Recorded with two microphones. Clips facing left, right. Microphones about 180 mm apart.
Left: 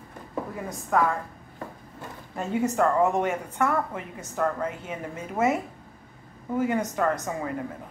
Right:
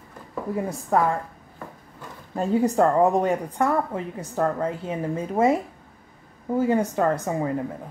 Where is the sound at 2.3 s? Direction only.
35° right (ahead or behind).